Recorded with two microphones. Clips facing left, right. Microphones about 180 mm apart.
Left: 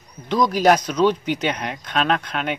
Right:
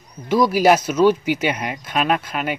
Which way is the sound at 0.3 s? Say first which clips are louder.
Right 2 dB; 5° right (ahead or behind).